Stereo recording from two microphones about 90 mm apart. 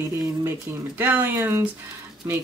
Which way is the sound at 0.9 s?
20° right (ahead or behind).